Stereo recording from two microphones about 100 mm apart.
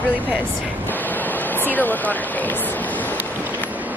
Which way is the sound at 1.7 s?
15° left (ahead or behind).